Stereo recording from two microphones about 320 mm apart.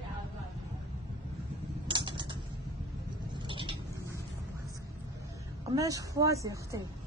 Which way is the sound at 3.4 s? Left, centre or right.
Centre.